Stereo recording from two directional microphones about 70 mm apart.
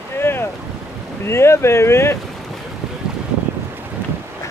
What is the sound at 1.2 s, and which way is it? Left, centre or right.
Speech, left.